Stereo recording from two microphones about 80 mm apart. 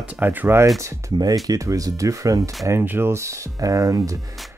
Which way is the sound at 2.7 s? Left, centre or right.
Right.